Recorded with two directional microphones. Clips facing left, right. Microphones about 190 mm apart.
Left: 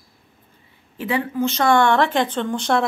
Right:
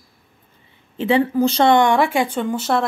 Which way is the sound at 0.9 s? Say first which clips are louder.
Right 6 dB; 25° right (ahead or behind).